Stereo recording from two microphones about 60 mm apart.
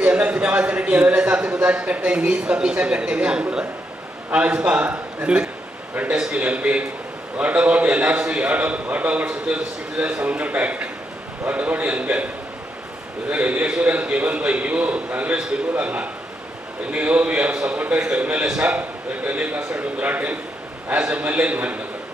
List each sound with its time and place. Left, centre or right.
0.0 s a man's voice: right
13.3 s a man's voice: right